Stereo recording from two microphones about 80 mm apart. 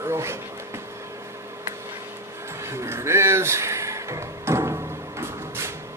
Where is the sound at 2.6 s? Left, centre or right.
Right.